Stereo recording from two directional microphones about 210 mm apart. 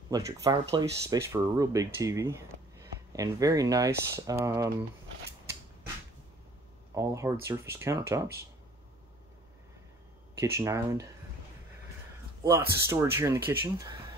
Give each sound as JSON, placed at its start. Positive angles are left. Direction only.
{"t": 0.1, "sound": "speech", "side_deg": -15}
{"t": 7.0, "sound": "speech", "side_deg": -15}
{"t": 10.4, "sound": "speech", "side_deg": -15}
{"t": 12.7, "sound": "speech", "side_deg": -15}